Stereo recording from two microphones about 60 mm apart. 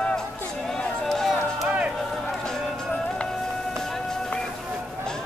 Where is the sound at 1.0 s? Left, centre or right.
Centre.